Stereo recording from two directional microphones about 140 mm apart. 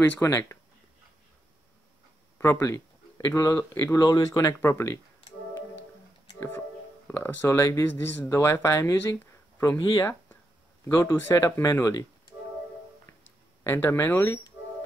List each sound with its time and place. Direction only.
0.0 s speech: 15° left (ahead or behind)
2.3 s speech: 15° left (ahead or behind)
7.1 s speech: 15° left (ahead or behind)
10.9 s speech: 20° left (ahead or behind)
13.7 s speech: 15° left (ahead or behind)